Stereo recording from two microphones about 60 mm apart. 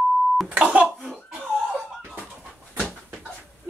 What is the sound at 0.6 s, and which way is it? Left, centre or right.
Speech, right.